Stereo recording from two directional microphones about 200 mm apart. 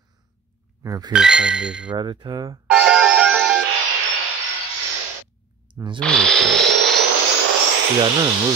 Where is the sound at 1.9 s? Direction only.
25° right (ahead or behind).